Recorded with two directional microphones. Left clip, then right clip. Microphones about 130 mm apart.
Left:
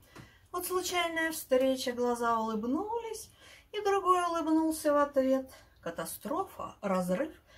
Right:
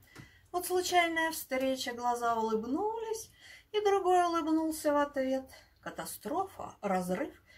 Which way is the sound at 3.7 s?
15° left (ahead or behind).